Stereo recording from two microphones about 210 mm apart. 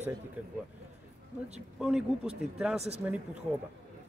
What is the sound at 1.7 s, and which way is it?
Speech, 5° right (ahead or behind).